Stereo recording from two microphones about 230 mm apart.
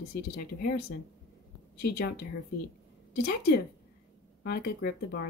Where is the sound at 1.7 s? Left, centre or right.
Left.